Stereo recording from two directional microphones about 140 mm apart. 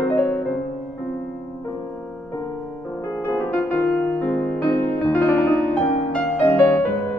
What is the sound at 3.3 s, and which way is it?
Music, 15° left (ahead or behind).